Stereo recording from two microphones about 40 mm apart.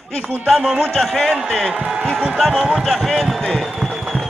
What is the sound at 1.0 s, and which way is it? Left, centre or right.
Speech, centre.